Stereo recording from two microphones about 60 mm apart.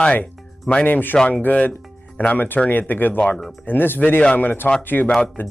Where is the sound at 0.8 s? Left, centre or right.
Left.